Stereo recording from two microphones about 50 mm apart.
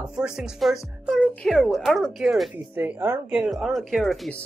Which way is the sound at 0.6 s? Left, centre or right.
Centre.